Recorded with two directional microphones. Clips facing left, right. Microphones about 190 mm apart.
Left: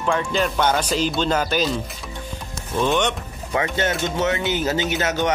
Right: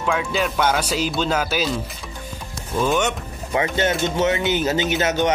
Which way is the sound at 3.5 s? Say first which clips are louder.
Right 2 dB; 20° right (ahead or behind).